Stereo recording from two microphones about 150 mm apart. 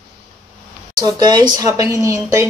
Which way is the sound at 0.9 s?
25° right (ahead or behind).